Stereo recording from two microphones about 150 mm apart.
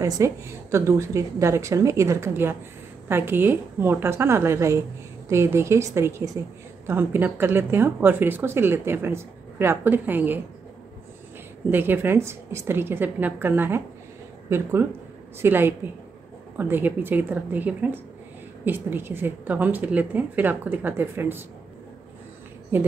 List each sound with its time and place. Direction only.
0.0 s a woman's voice: 20° right (ahead or behind)
11.7 s a woman's voice: 15° right (ahead or behind)